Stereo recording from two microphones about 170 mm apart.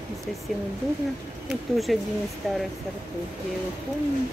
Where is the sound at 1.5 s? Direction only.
Centre (ahead or behind).